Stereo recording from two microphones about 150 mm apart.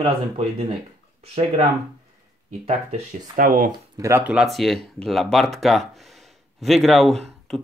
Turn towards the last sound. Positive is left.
turn(degrees=0)  # may be behind; listen again after turning